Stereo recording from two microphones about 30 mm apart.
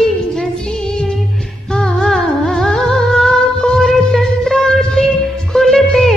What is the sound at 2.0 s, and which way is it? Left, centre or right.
Music, centre.